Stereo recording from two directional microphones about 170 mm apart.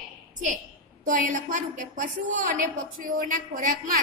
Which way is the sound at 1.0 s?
50° right (ahead or behind).